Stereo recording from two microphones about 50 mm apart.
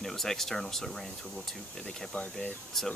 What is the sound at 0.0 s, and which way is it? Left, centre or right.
Speech, centre.